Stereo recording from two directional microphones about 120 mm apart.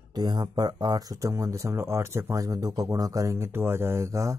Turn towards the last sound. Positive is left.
turn(degrees=-25)  # may be behind; listen again after turning